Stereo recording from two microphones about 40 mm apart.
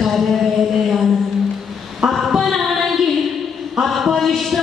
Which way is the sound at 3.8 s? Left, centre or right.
Centre.